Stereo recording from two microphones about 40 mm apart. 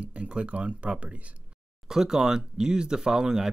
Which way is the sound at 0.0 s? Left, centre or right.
Right.